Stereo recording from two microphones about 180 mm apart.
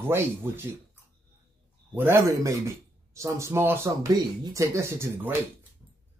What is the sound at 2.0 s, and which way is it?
Speech, 15° right (ahead or behind).